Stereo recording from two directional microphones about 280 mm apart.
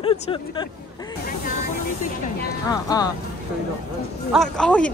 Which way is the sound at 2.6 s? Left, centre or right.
Centre.